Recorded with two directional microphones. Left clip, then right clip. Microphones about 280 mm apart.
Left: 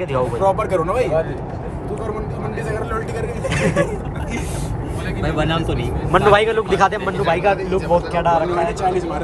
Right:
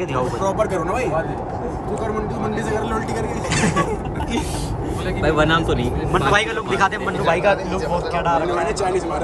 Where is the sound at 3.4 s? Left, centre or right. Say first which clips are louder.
Left 2 dB; centre.